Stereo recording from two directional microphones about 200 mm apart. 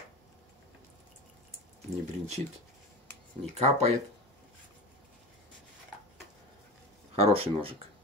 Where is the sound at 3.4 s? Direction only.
35° right (ahead or behind).